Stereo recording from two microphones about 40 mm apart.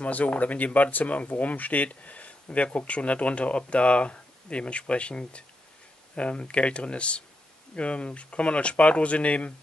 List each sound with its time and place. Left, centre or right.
0.0 s speech: left